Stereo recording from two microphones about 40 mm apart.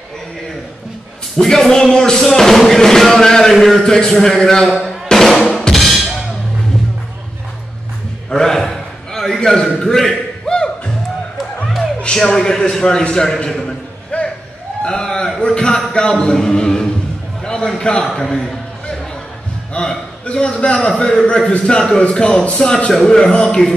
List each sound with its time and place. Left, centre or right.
1.4 s speech: centre
4.6 s music: centre
5.1 s drum: centre
5.7 s drum kit: centre
8.3 s a sound: centre
11.3 s music: centre
11.8 s music: centre
13.1 s speech: centre
14.1 s music: left
14.9 s a sound: centre
15.4 s a sound: left
15.9 s a man's voice: centre
19.7 s a sound: centre
20.2 s a man's voice: left